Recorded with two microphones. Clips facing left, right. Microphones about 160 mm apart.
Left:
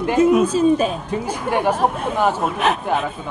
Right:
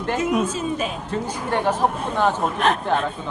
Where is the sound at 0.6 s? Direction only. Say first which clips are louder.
Left 9 dB; 35° left (ahead or behind).